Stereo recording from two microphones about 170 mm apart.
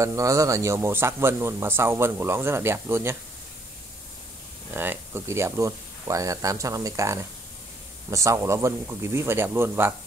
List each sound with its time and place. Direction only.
0.0 s speech: 20° right (ahead or behind)
4.7 s speech: 15° right (ahead or behind)